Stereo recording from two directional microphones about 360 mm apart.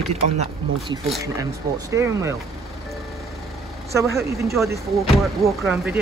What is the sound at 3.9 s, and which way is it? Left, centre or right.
Speech, centre.